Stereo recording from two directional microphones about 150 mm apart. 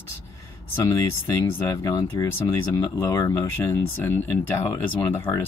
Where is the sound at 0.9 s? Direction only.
20° left (ahead or behind).